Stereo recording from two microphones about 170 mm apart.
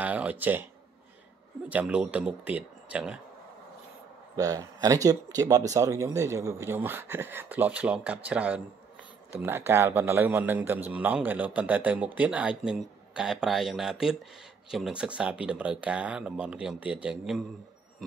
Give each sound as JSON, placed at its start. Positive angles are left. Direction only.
{"t": 0.0, "sound": "speech", "side_deg": -10}
{"t": 1.7, "sound": "speech", "side_deg": -10}
{"t": 4.4, "sound": "a man's voice", "side_deg": -20}